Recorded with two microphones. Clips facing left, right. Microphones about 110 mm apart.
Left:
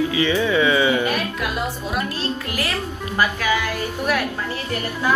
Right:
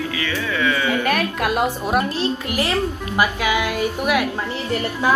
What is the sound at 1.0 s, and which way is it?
Music, 60° right (ahead or behind).